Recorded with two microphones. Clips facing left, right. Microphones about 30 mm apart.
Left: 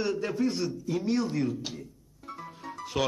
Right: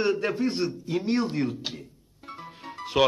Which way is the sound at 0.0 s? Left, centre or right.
Right.